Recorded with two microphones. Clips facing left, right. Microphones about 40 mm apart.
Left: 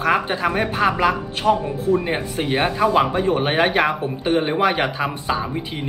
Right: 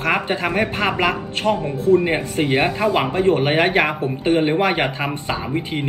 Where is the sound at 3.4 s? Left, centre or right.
Right.